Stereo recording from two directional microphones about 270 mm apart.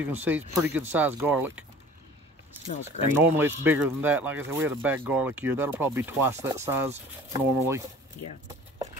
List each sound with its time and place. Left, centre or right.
0.0 s speech: centre
2.6 s speech: left
3.2 s speech: centre